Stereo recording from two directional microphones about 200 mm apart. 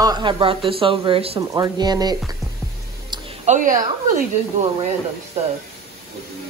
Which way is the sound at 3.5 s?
40° right (ahead or behind).